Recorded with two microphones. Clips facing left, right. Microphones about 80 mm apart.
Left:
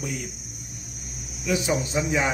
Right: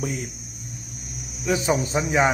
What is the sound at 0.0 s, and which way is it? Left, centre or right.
Speech, right.